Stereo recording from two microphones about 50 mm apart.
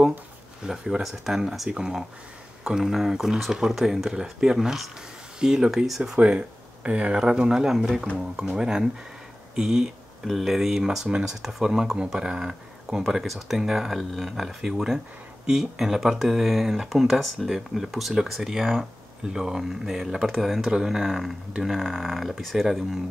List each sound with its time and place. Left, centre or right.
0.7 s speech: centre
6.1 s speech: right
9.6 s speech: centre
11.1 s speech: centre
11.4 s speech: centre